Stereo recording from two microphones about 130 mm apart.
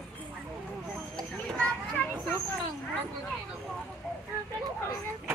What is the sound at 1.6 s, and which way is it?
Children playing, 10° left (ahead or behind).